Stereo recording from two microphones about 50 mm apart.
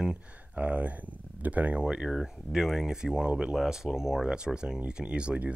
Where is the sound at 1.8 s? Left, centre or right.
Centre.